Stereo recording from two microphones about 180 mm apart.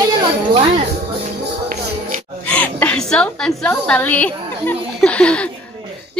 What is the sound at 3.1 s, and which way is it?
A woman's voice, 5° left (ahead or behind).